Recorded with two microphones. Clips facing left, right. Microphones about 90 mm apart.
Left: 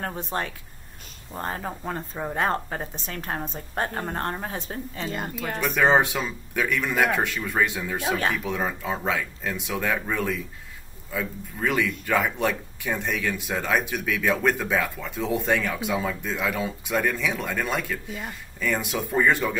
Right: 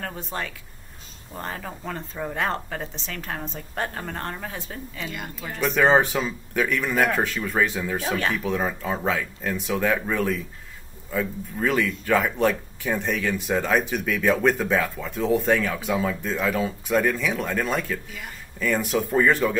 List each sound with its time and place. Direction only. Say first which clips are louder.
0.3 s a woman's voice: left 2 dB; 25° left (ahead or behind)
1.7 s a woman's voice: left 2 dB; 20° left (ahead or behind); by 5.3 s 35° left (ahead or behind)
5.3 s speech: left 5 dB; 65° left (ahead or behind)
5.6 s speech: right 2 dB; 5° left (ahead or behind)